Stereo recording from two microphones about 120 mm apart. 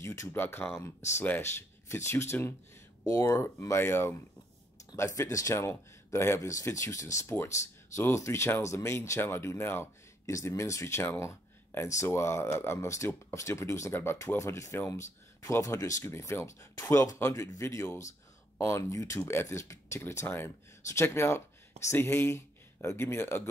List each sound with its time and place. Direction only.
0.0 s speech: 20° left (ahead or behind)